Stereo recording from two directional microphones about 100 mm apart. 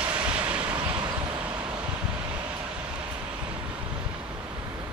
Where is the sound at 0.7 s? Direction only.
50° right (ahead or behind).